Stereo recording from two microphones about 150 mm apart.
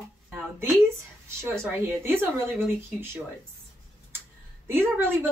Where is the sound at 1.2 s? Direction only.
20° right (ahead or behind).